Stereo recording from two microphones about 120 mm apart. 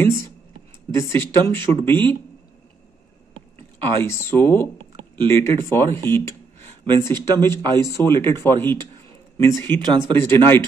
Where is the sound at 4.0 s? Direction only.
20° left (ahead or behind).